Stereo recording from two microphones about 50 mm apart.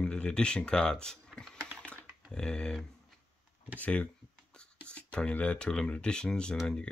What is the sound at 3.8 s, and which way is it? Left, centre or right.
Speech, left.